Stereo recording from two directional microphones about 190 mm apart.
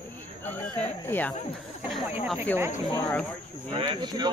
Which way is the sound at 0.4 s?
10° left (ahead or behind).